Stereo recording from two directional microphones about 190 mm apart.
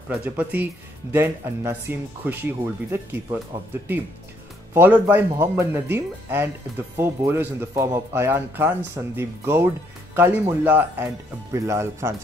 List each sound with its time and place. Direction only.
0.1 s speech: 10° right (ahead or behind)
4.7 s speech: 10° right (ahead or behind)